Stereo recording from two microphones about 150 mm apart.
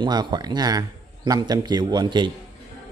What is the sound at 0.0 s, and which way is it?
Speech, 30° right (ahead or behind).